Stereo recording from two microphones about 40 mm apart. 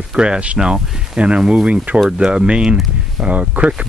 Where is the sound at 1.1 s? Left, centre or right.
Right.